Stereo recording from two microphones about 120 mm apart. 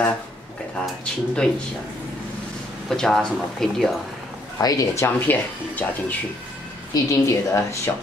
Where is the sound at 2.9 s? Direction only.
5° left (ahead or behind).